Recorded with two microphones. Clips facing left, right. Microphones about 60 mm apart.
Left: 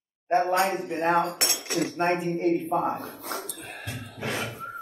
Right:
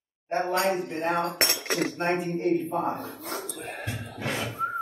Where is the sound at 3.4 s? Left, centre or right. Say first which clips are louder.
Right 3 dB; right.